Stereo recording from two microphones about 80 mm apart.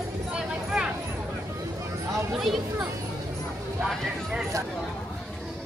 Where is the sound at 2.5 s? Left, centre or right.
Centre.